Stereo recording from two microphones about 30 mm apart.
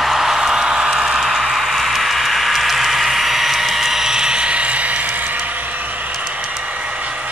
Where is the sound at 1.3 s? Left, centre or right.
Centre; by 6.1 s right.